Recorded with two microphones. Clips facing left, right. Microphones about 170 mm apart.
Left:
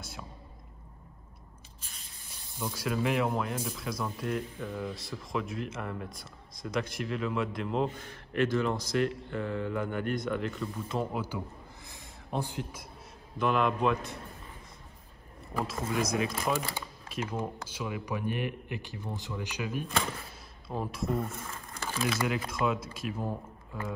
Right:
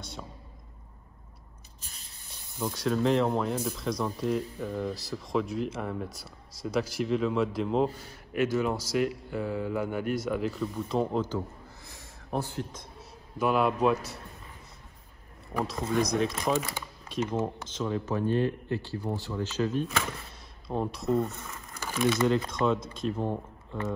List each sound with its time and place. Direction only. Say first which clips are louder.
2.6 s speech: right 4 dB; 5° left (ahead or behind)
11.2 s a sound: right 5 dB; 15° left (ahead or behind)
12.4 s speech: right 2 dB; 15° left (ahead or behind)
13.4 s speech: right 2 dB; 5° right (ahead or behind)
15.5 s speech: right 3 dB; centre (ahead or behind)
20.0 s speech: even; centre (ahead or behind)
21.2 s a sound: right 5 dB; centre (ahead or behind)
22.0 s speech: right 6 dB; 10° left (ahead or behind)